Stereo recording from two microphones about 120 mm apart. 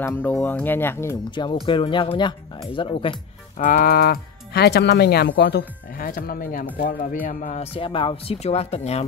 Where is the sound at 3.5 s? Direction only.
80° left.